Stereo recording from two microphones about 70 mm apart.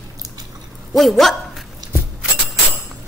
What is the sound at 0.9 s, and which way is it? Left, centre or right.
Speech, centre.